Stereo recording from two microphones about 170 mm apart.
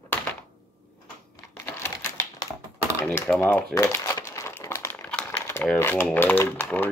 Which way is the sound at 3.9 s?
15° left (ahead or behind).